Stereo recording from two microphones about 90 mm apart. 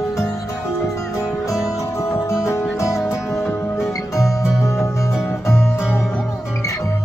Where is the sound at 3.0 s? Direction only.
Centre (ahead or behind).